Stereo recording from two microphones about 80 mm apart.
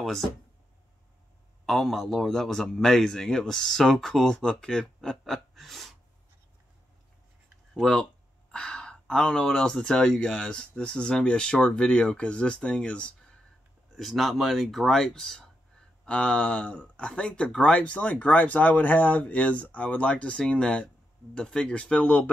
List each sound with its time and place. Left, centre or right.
1.7 s a man's voice: centre
7.7 s speech: centre
13.9 s a man's voice: centre